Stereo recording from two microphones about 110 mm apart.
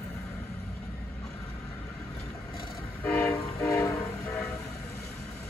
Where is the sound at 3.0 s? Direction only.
25° left (ahead or behind).